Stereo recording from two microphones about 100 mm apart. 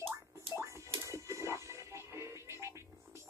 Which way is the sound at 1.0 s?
30° right (ahead or behind).